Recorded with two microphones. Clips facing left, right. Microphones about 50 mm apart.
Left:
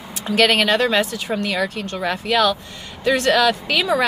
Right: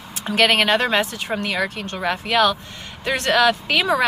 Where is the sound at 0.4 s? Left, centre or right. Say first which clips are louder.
Left 1 dB; centre.